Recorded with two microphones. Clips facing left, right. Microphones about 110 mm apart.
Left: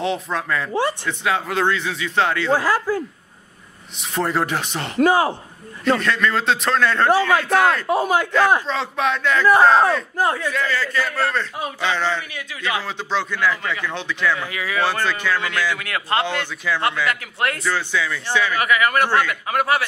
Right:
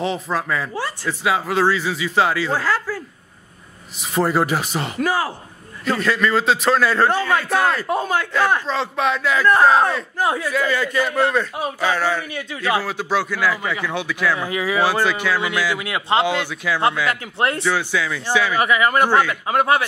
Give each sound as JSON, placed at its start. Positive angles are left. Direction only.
{"t": 0.0, "sound": "speech", "side_deg": 0}
{"t": 2.6, "sound": "speech", "side_deg": 15}
{"t": 4.0, "sound": "speech", "side_deg": -5}
{"t": 4.9, "sound": "speech", "side_deg": 20}
{"t": 5.9, "sound": "speech", "side_deg": 0}
{"t": 8.0, "sound": "speech", "side_deg": 15}
{"t": 8.6, "sound": "speech", "side_deg": 0}
{"t": 14.4, "sound": "a man's voice", "side_deg": -25}
{"t": 14.8, "sound": "speech", "side_deg": -10}
{"t": 17.1, "sound": "a man's voice", "side_deg": -30}
{"t": 17.6, "sound": "speech", "side_deg": -5}
{"t": 18.6, "sound": "a man's voice", "side_deg": -25}